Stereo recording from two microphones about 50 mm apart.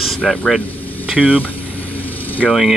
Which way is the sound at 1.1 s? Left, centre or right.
Right.